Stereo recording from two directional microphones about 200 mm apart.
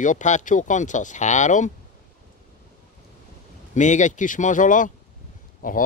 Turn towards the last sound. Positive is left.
turn(degrees=40)  # may be behind; listen again after turning